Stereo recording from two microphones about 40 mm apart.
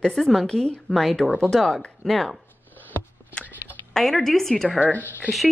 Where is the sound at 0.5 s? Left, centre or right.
Centre.